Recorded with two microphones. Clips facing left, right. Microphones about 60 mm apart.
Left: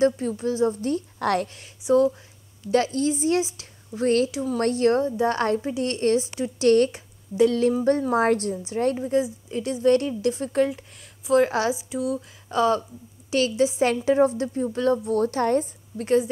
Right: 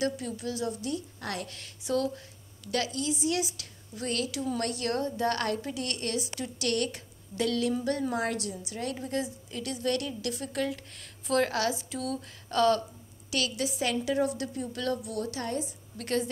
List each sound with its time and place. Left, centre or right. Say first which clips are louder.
0.4 s a woman's voice: left 13 dB; left
1.5 s a woman's voice: left 10 dB; centre
2.6 s a woman's voice: left 9 dB; left
5.0 s a woman's voice: left 6 dB; centre
8.1 s a woman's voice: left 10 dB; left
8.9 s a woman's voice: left 9 dB; centre
11.2 s speech: left 7 dB; centre
11.5 s speech: left 6 dB; centre
13.3 s a woman's voice: left 10 dB; left
16.0 s a woman's voice: left 9 dB; centre